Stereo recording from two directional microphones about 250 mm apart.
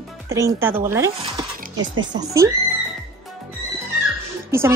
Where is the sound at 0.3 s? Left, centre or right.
Centre.